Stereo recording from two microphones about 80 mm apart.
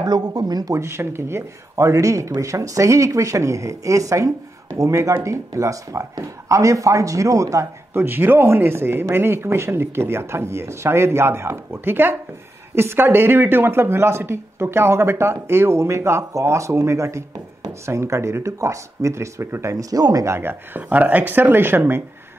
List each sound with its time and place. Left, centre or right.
0.0 s speech: right
0.7 s speech: right
7.9 s speech: right
20.2 s speech: right